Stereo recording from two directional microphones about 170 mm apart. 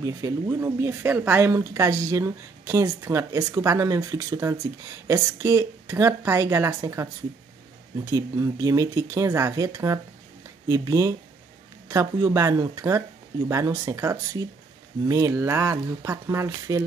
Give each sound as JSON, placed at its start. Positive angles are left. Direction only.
{"t": 0.0, "sound": "speech", "side_deg": -20}